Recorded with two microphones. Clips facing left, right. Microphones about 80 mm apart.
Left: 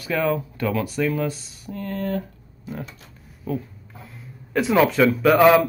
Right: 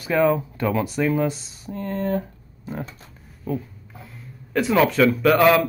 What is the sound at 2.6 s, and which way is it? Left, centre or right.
Speech, right.